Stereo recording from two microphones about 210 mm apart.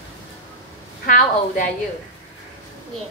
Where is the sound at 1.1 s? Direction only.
40° left (ahead or behind).